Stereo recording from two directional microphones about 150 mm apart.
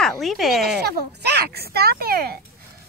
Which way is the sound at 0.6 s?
90° right.